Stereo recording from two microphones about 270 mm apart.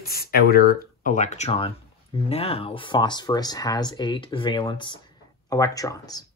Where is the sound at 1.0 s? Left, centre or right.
Left.